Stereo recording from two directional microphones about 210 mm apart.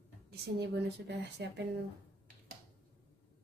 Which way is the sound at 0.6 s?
55° right (ahead or behind).